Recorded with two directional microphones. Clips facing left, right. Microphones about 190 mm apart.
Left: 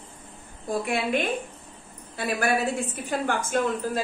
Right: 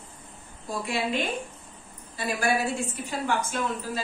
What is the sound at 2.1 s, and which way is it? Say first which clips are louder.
A woman's voice: left 1 dB; 55° left (ahead or behind).